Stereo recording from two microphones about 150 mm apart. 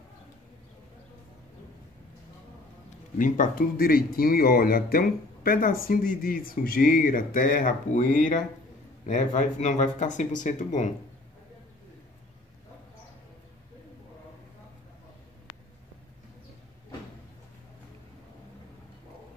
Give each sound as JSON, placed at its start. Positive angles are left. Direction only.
{"t": 3.2, "sound": "speech", "side_deg": 60}